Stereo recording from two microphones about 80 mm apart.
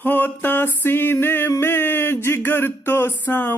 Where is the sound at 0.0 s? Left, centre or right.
Left.